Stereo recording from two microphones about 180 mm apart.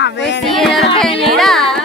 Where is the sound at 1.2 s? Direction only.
Centre (ahead or behind).